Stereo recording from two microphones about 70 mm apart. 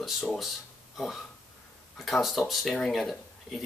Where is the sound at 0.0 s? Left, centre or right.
Centre.